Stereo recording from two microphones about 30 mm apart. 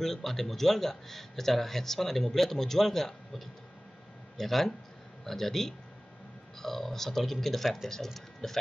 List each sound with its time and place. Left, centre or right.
0.0 s a man's voice: centre